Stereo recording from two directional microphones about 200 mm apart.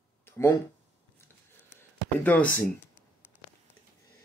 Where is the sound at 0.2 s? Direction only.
10° left (ahead or behind).